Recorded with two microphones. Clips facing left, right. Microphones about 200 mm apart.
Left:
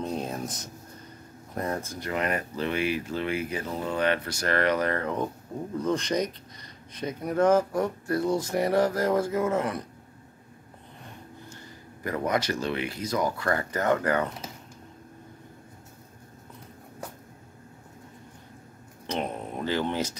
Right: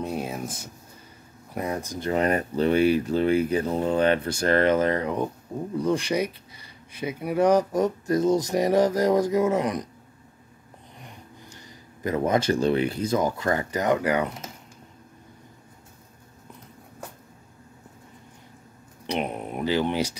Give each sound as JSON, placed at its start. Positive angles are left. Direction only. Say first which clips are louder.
{"t": 0.0, "sound": "a sound", "louder": "right 1 dB", "side_deg": -10}
{"t": 1.5, "sound": "speech", "louder": "right 2 dB", "side_deg": -10}
{"t": 2.0, "sound": "speech", "louder": "right 9 dB", "side_deg": -30}
{"t": 11.0, "sound": "speech", "louder": "left 1 dB", "side_deg": -15}
{"t": 19.0, "sound": "speech", "louder": "right 3 dB", "side_deg": -15}